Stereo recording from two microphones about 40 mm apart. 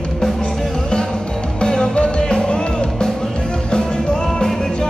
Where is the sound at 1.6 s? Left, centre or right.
Left.